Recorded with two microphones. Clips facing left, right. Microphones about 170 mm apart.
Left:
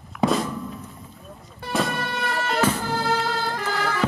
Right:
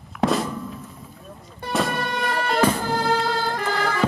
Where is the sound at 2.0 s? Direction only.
15° right (ahead or behind).